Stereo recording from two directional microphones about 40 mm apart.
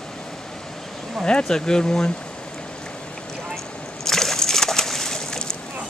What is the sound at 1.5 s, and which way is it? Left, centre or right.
Speech, centre.